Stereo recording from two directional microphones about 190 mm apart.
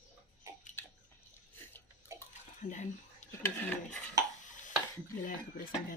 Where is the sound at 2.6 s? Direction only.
40° left (ahead or behind).